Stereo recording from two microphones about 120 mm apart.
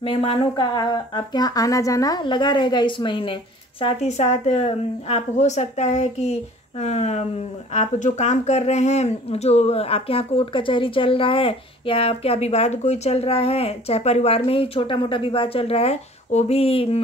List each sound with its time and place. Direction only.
0.0 s speech: 55° left (ahead or behind)
3.8 s a woman's voice: 65° left (ahead or behind)
7.7 s speech: 80° left; by 17.0 s 55° left (ahead or behind)